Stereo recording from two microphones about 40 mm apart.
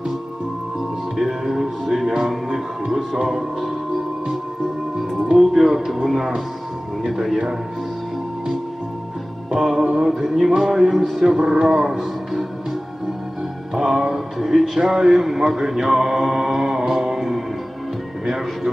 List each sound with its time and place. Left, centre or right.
1.1 s music: centre
3.2 s speech: centre
4.9 s music: centre
6.0 s speech: centre
9.6 s a man's voice: centre
10.1 s a sound: centre
10.5 s speech: centre
11.6 s music: centre
13.7 s music: centre
14.8 s a man's voice: right
15.2 s mantra: centre
18.2 s music: centre